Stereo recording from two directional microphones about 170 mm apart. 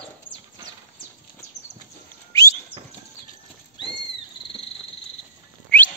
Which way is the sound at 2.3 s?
20° left (ahead or behind).